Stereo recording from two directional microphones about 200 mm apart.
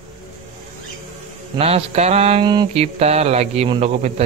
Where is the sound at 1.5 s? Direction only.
30° right (ahead or behind).